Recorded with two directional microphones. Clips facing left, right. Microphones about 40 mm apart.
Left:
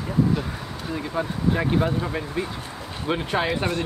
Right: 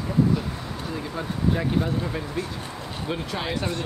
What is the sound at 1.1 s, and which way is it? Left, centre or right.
Speech, centre.